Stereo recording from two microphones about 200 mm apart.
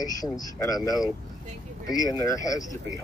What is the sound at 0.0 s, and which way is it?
Speech, 20° left (ahead or behind).